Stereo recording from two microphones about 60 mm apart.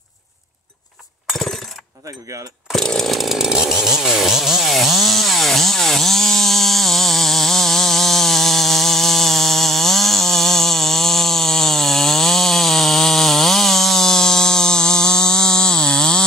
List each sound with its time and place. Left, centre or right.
2.7 s chainsaw: centre